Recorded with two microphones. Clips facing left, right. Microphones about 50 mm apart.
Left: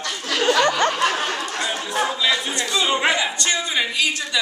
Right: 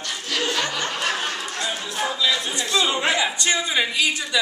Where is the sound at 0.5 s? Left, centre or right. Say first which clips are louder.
Left 8 dB; left.